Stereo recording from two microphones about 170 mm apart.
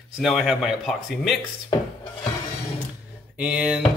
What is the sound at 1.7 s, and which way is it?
Music, 20° left (ahead or behind).